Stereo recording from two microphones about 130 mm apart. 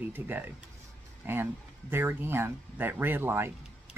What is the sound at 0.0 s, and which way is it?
Speech, 15° right (ahead or behind).